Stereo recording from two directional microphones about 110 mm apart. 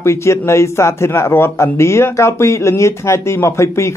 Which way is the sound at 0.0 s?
25° left (ahead or behind).